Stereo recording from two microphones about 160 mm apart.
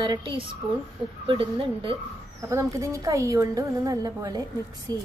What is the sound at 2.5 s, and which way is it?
A woman's voice, 20° right (ahead or behind).